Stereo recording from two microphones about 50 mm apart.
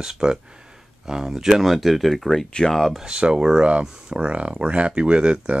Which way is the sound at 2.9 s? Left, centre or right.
Centre.